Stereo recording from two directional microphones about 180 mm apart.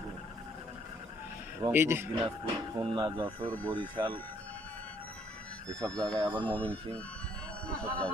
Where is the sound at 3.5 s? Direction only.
10° left (ahead or behind).